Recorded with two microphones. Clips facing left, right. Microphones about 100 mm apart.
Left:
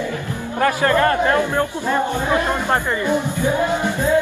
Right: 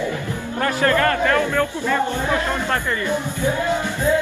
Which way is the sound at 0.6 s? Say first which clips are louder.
Left 2 dB; 20° left (ahead or behind).